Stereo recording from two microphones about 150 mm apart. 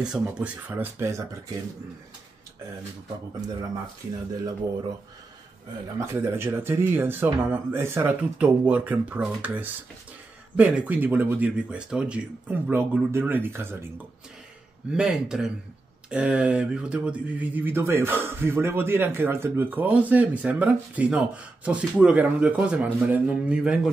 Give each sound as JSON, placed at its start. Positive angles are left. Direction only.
{"t": 0.0, "sound": "speech", "side_deg": -5}
{"t": 5.9, "sound": "speech", "side_deg": -20}
{"t": 14.9, "sound": "speech", "side_deg": -5}